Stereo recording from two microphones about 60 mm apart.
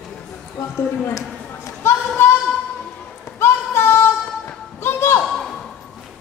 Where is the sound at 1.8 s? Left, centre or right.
Left.